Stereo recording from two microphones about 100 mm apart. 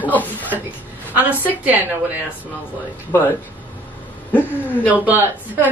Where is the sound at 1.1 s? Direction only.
15° right (ahead or behind).